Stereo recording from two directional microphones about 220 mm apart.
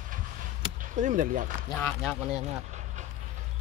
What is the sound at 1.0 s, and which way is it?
Speech, 35° right (ahead or behind).